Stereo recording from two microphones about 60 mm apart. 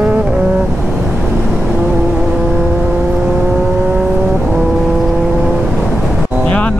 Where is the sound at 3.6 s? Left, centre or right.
Right.